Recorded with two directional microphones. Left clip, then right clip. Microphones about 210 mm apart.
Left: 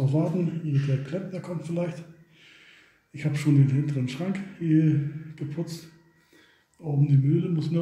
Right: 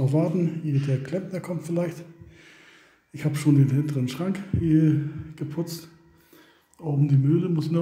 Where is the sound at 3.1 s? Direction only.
30° right (ahead or behind).